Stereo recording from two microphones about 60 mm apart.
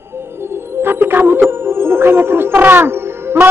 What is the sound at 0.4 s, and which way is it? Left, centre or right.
Music, right.